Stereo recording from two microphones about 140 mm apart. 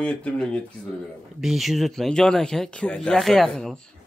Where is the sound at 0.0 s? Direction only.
10° left (ahead or behind).